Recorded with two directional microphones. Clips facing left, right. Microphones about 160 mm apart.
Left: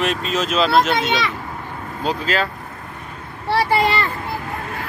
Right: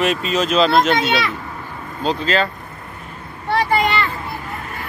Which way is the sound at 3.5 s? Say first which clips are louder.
Even; 30° left (ahead or behind).